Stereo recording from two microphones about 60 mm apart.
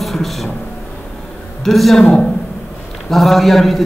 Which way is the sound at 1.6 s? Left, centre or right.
Centre.